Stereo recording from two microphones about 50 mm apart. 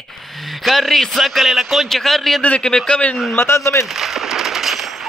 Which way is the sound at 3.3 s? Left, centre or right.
Left.